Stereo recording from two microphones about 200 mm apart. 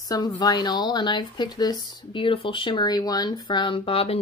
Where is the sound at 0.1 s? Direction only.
20° left (ahead or behind).